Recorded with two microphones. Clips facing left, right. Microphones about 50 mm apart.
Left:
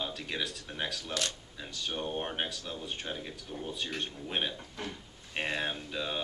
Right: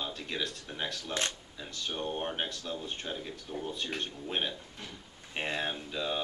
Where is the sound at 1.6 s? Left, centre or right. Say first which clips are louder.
Even; centre.